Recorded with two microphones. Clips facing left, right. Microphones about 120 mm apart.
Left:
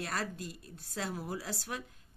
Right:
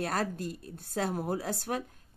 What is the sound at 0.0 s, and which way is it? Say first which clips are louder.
Speech: right 6 dB; 50° right (ahead or behind).